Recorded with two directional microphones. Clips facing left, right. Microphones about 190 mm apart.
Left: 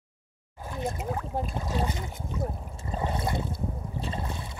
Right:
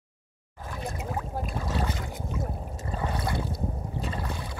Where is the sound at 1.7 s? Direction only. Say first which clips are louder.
Even; 20° left (ahead or behind).